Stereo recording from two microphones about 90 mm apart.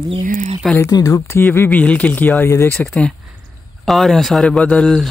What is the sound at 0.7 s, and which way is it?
Speech, 40° left (ahead or behind).